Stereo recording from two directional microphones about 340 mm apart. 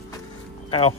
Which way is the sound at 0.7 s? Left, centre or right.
Centre.